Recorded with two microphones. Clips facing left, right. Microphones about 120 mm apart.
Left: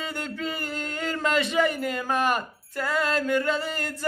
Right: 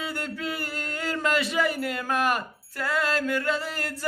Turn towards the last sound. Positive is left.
turn(degrees=0)  # may be behind; listen again after turning